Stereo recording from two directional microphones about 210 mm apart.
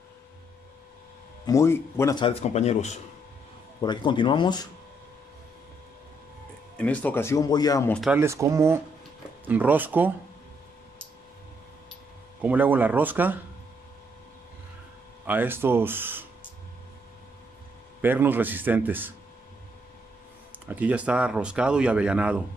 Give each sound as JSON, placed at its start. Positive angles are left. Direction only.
{"t": 1.4, "sound": "speech", "side_deg": 15}
{"t": 3.8, "sound": "speech", "side_deg": 20}
{"t": 6.8, "sound": "speech", "side_deg": 5}
{"t": 7.9, "sound": "speech", "side_deg": 0}
{"t": 8.2, "sound": "a man's voice", "side_deg": -15}
{"t": 12.4, "sound": "a man's voice", "side_deg": -10}
{"t": 15.2, "sound": "a man's voice", "side_deg": -10}
{"t": 18.0, "sound": "a man's voice", "side_deg": -10}
{"t": 20.6, "sound": "speech", "side_deg": -5}